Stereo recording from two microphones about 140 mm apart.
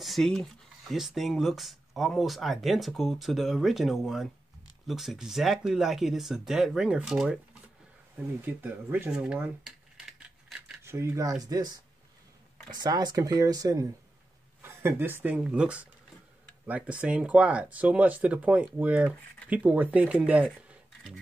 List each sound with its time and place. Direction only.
0.0 s speech: centre (ahead or behind)
8.5 s a sound: 15° right (ahead or behind)
10.8 s speech: 20° right (ahead or behind)